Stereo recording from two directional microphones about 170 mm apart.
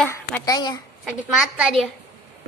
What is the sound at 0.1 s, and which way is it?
Speech, 20° left (ahead or behind).